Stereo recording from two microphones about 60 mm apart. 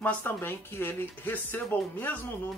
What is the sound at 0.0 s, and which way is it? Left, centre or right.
Speech, left.